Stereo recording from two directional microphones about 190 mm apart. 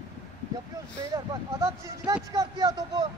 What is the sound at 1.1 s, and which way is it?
Speech, 15° right (ahead or behind).